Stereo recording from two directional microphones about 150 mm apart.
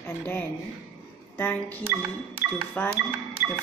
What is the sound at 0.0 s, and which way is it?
A woman's voice, 15° left (ahead or behind).